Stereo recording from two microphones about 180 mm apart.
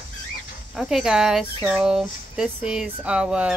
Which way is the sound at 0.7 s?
Centre (ahead or behind).